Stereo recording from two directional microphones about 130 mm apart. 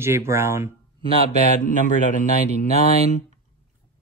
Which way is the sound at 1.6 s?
90° left.